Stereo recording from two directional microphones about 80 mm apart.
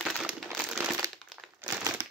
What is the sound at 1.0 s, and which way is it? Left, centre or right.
Crumpling, right.